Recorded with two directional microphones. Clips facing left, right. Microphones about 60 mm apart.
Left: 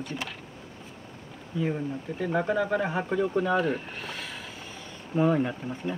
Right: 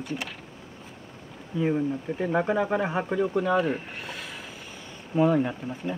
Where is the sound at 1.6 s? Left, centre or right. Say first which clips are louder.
Right 4 dB; centre.